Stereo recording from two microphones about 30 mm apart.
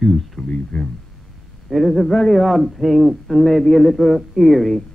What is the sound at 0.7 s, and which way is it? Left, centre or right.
Speech, left.